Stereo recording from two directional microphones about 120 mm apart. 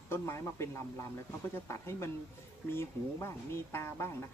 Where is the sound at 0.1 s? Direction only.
25° left (ahead or behind).